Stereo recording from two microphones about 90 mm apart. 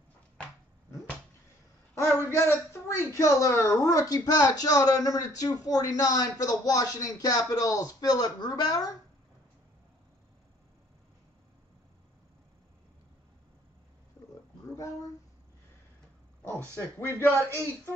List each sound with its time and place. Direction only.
2.0 s a man's voice: 30° left (ahead or behind); by 8.9 s 45° left (ahead or behind)
17.0 s a man's voice: 25° left (ahead or behind)